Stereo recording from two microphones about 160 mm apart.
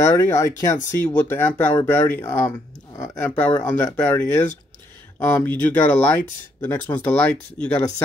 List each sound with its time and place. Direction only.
0.0 s speech: 20° left (ahead or behind)